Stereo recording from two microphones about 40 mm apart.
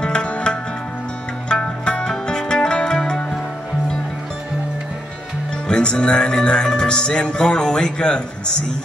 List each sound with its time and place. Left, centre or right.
0.0 s music: left
5.7 s music: left